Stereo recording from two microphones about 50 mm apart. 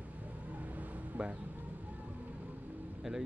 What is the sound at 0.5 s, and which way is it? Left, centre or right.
Vehicle, right.